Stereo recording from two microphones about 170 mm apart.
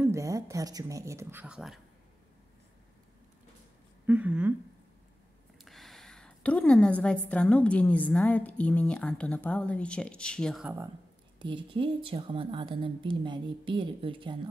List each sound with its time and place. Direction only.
0.0 s speech: 15° right (ahead or behind)
4.0 s speech: 10° right (ahead or behind)
5.6 s a woman's voice: centre (ahead or behind)
11.3 s a woman's voice: 30° right (ahead or behind)